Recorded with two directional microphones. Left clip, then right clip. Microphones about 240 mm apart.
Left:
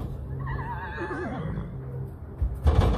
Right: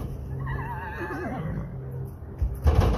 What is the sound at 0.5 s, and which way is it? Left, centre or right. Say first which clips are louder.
Neigh: even; right.